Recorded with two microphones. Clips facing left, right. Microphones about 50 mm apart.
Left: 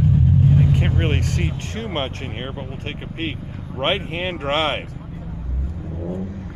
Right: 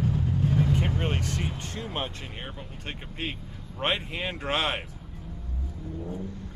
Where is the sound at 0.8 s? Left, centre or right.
Left.